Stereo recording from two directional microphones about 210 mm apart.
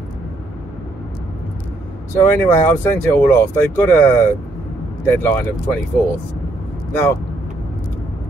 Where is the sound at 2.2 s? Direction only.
10° left (ahead or behind).